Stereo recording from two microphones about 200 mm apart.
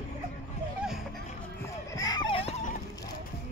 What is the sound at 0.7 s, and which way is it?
Music, centre (ahead or behind).